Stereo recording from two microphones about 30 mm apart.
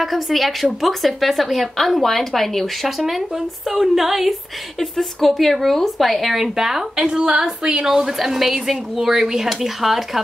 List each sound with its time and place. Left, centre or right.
0.0 s a woman's voice: centre
3.0 s a woman's voice: centre
7.1 s a woman's voice: right; by 8.7 s centre
8.9 s speech: centre